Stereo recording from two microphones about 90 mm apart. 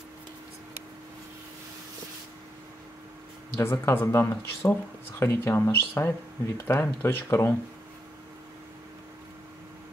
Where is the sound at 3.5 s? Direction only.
30° left (ahead or behind).